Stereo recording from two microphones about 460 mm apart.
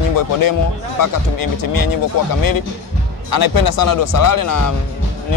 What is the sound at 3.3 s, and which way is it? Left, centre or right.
Speech, left.